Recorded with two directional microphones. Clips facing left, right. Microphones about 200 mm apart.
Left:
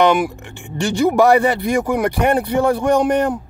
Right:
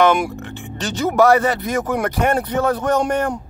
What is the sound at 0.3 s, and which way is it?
Speech, 15° left (ahead or behind).